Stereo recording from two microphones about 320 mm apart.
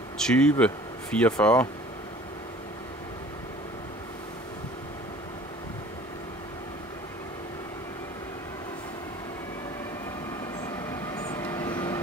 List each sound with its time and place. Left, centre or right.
0.2 s speech: centre
10.6 s vehicle: centre